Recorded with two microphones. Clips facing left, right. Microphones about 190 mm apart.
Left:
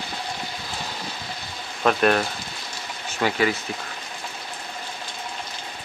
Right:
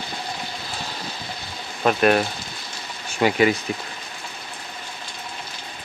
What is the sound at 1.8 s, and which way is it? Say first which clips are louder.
Speech: right 2 dB; 10° right (ahead or behind).